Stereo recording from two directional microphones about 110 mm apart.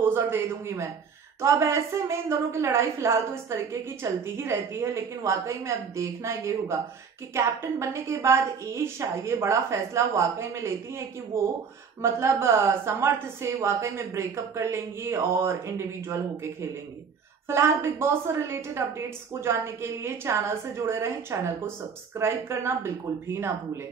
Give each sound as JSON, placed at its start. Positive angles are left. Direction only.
{"t": 0.0, "sound": "a woman's voice", "side_deg": -20}